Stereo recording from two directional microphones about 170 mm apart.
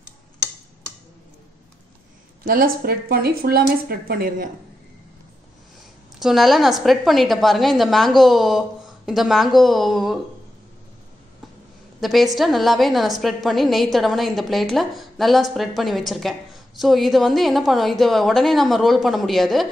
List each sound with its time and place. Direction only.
2.4 s speech: 60° right (ahead or behind)
6.1 s a woman's voice: centre (ahead or behind)
12.0 s a woman's voice: centre (ahead or behind)